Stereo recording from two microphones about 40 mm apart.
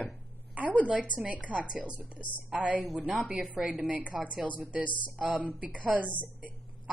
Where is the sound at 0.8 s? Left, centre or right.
Right.